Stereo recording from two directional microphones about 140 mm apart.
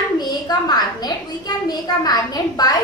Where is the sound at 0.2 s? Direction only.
30° left (ahead or behind).